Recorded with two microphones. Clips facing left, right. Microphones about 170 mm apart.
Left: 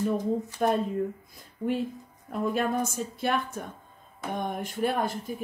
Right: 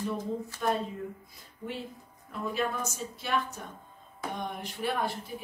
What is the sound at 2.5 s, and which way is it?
Speech, 50° left (ahead or behind).